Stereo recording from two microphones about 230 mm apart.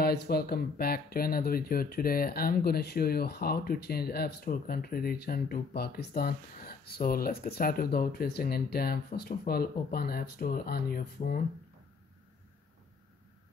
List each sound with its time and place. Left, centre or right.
0.0 s speech: left